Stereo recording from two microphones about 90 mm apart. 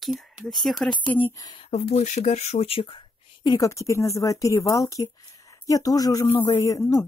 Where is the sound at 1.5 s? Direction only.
70° left (ahead or behind).